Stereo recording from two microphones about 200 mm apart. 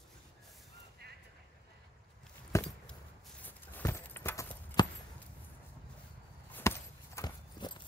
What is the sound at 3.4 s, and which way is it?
Clip-clop, 10° left (ahead or behind).